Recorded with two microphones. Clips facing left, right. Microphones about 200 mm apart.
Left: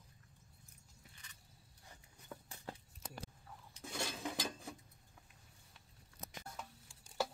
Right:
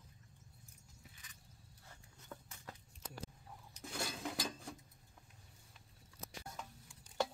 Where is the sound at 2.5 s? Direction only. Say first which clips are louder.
Left 5 dB; 30° left (ahead or behind).